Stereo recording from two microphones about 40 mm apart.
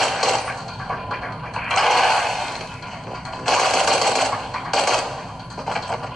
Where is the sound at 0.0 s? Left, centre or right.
Centre.